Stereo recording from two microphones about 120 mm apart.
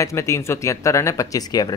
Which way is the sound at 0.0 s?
25° left (ahead or behind).